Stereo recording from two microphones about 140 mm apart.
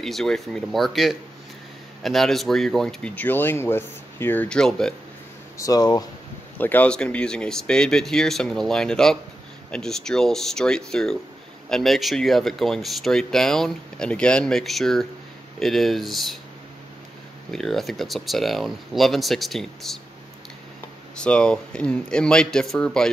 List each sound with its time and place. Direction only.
0.0 s speech: centre (ahead or behind)
5.6 s speech: 25° left (ahead or behind)
6.6 s speech: 10° left (ahead or behind)
17.5 s speech: centre (ahead or behind)
21.2 s speech: 5° left (ahead or behind)